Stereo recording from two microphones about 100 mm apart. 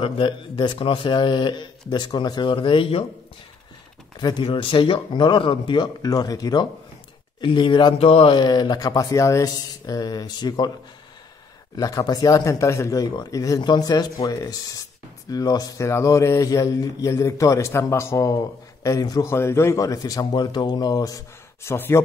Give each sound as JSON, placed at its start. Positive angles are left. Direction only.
{"t": 0.0, "sound": "speech", "side_deg": 55}
{"t": 4.2, "sound": "speech", "side_deg": 45}
{"t": 4.5, "sound": "speech", "side_deg": 60}
{"t": 6.0, "sound": "speech", "side_deg": 40}
{"t": 7.4, "sound": "speech", "side_deg": 55}
{"t": 8.4, "sound": "speech", "side_deg": 45}
{"t": 11.7, "sound": "speech", "side_deg": 35}
{"t": 19.2, "sound": "speech", "side_deg": 25}
{"t": 21.6, "sound": "speech", "side_deg": 25}